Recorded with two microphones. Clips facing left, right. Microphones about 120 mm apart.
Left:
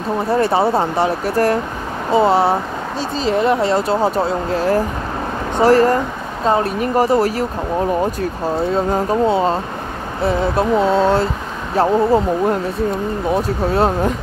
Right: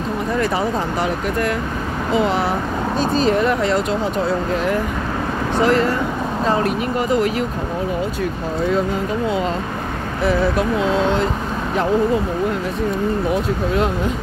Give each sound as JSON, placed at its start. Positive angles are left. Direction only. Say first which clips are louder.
{"t": 0.3, "sound": "speech", "louder": "left 6 dB", "side_deg": 30}
{"t": 8.6, "sound": "speech", "louder": "left 1 dB", "side_deg": 30}